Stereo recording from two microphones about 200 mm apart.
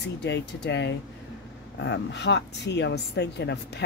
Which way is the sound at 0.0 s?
60° left (ahead or behind).